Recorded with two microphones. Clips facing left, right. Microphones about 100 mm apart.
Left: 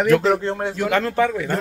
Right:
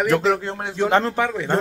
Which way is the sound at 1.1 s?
15° right (ahead or behind).